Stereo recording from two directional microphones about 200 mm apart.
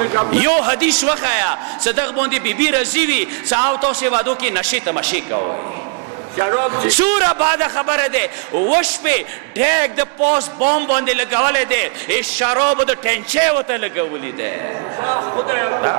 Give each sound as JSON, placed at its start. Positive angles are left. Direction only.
{"t": 0.0, "sound": "a man's voice", "side_deg": -20}
{"t": 5.3, "sound": "a man's voice", "side_deg": -30}